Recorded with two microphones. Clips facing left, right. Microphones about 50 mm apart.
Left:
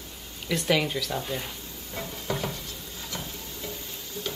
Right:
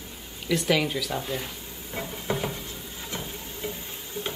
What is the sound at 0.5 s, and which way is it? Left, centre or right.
Speech, centre.